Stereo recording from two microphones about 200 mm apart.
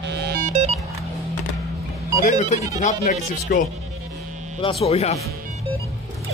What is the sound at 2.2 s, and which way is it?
Speech, 35° left (ahead or behind).